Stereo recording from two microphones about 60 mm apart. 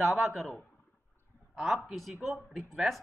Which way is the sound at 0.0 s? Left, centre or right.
Centre.